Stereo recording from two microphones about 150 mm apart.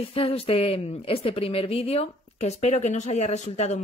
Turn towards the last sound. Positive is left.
turn(degrees=50)  # may be behind; listen again after turning